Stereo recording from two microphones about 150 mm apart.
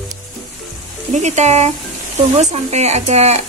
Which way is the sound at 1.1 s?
50° right (ahead or behind).